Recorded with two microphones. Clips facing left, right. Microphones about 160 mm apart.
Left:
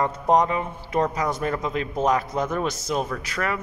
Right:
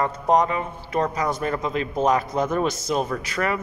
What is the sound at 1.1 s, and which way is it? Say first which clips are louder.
A woman's voice: right 1 dB; centre (ahead or behind).